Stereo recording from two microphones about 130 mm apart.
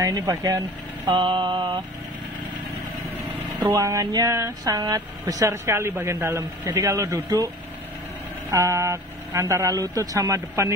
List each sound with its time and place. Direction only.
0.0 s speech: 30° right (ahead or behind)
3.7 s speech: 25° right (ahead or behind)